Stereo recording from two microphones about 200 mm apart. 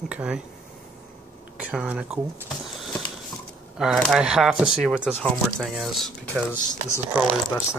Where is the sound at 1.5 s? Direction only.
5° right (ahead or behind).